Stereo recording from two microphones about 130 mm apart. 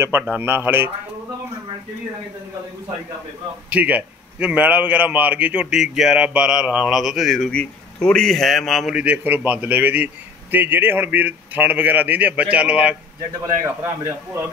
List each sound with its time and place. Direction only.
0.0 s a man's voice: 15° right (ahead or behind)
3.7 s a man's voice: 10° right (ahead or behind)
13.5 s a man's voice: 25° right (ahead or behind)